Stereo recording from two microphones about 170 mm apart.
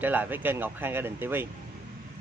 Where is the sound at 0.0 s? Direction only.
10° right (ahead or behind).